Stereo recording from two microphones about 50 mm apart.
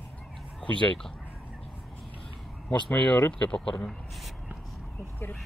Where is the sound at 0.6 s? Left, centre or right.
Left.